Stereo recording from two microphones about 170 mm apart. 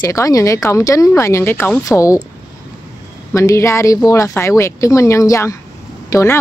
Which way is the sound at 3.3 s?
15° left (ahead or behind).